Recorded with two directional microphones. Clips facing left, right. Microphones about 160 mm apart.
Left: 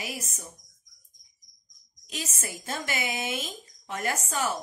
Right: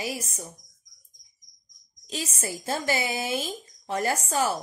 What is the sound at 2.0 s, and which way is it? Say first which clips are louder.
A child's voice: right 4 dB; 30° right (ahead or behind).